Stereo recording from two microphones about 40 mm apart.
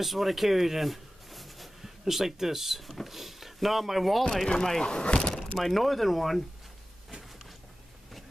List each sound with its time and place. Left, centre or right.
0.0 s speech: centre
4.5 s speech: centre
5.6 s speech: centre